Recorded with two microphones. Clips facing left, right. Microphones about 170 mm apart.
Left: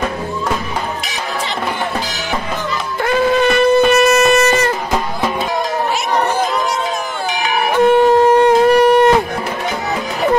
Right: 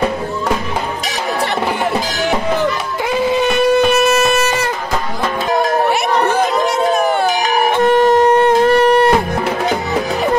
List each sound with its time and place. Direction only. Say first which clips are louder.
3.1 s shofar: left 2 dB; 10° right (ahead or behind)
6.9 s music: right 8 dB; 60° right (ahead or behind)
7.9 s shofar: left 1 dB; 10° left (ahead or behind)